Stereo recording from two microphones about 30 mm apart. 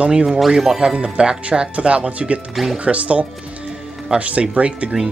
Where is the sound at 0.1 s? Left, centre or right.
Right.